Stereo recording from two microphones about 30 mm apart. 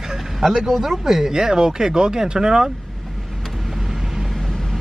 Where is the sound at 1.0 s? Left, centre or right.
Centre.